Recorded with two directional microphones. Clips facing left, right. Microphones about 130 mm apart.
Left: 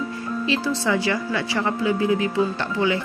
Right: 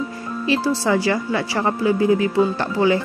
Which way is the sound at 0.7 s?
35° right (ahead or behind).